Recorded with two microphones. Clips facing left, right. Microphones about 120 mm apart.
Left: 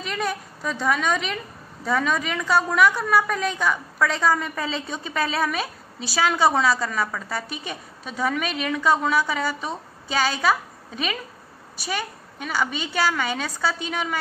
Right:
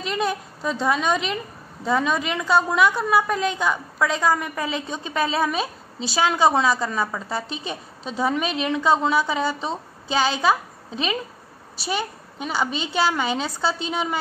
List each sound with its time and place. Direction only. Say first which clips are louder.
0.0 s a woman's voice: right 3 dB; 20° right (ahead or behind)